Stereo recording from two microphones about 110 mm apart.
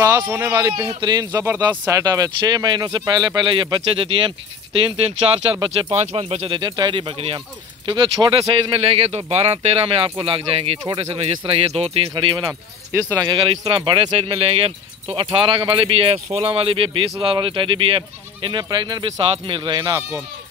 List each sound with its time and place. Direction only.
0.3 s speech: 20° right (ahead or behind)
0.6 s speech: 35° right (ahead or behind); by 12.1 s 65° right (ahead or behind)
12.2 s speech: 50° right (ahead or behind)